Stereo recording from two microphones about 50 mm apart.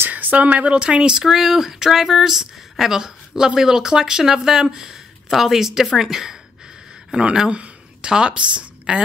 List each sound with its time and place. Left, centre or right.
0.1 s speech: right
1.2 s a woman's voice: centre; by 8.6 s right